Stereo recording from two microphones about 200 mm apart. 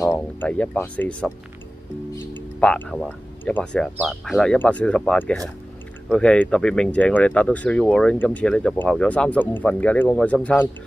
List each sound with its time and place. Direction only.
0.1 s speech: 5° left (ahead or behind)
2.3 s speech: 5° left (ahead or behind)